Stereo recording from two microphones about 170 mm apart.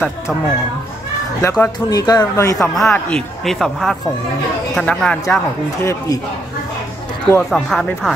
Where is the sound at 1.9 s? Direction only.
20° left (ahead or behind).